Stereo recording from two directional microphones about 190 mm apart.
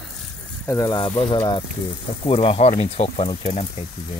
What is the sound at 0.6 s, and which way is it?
Speech, 15° left (ahead or behind).